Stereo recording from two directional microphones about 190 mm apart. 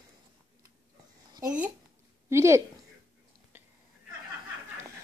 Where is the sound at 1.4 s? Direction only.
10° right (ahead or behind).